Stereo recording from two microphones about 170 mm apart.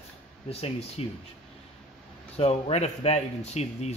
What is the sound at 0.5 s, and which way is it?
Speech, 35° left (ahead or behind).